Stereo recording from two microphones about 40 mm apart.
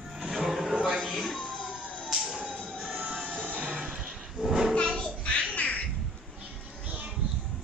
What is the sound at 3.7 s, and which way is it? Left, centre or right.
Music, right.